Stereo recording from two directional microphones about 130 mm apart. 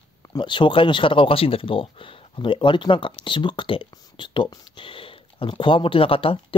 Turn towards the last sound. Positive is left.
turn(degrees=45)  # may be behind; listen again after turning